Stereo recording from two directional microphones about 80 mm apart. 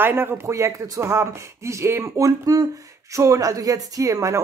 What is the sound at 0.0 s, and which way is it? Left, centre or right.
Speech, right.